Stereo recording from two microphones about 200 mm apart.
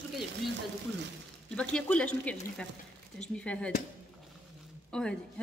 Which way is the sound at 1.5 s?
5° left (ahead or behind).